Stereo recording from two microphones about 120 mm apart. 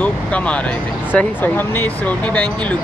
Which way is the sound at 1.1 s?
15° left (ahead or behind).